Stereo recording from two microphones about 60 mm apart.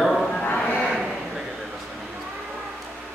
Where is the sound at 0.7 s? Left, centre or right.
Centre.